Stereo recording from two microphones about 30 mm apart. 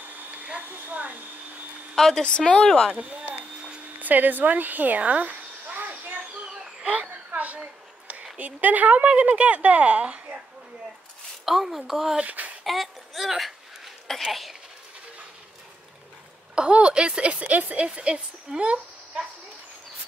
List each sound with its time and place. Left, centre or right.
0.6 s speech: right
2.0 s speech: centre
2.2 s speech: left
3.0 s a sound: right
4.0 s a sound: right
6.9 s a sound: right
8.5 s a woman's voice: right
11.4 s a woman's voice: centre
12.3 s speech: right
12.6 s speech: centre
16.5 s speech: right
17.4 s a woman's voice: right
17.7 s speech: right
18.6 s a sound: right